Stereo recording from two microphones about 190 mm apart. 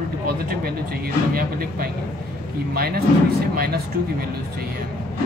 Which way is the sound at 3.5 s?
55° right (ahead or behind).